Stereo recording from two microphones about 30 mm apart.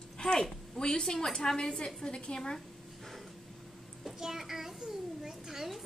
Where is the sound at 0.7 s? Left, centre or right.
Left.